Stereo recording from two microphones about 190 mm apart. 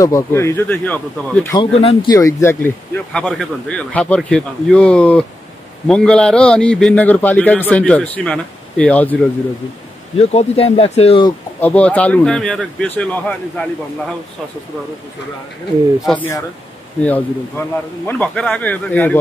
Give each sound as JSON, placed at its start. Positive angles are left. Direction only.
{"t": 0.0, "sound": "speech", "side_deg": 15}
{"t": 1.6, "sound": "speech", "side_deg": 30}
{"t": 2.0, "sound": "a man's voice", "side_deg": 15}
{"t": 10.1, "sound": "speech", "side_deg": 35}
{"t": 11.6, "sound": "speech", "side_deg": 5}
{"t": 16.1, "sound": "speech", "side_deg": 10}